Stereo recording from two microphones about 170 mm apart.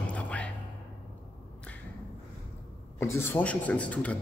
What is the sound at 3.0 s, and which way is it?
Speech, 15° left (ahead or behind).